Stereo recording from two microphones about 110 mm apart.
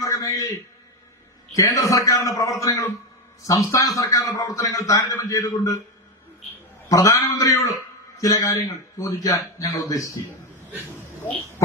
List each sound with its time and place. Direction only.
0.0 s a sound: 30° left (ahead or behind)
1.5 s a man's voice: 30° left (ahead or behind)
6.9 s a man's voice: 30° left (ahead or behind)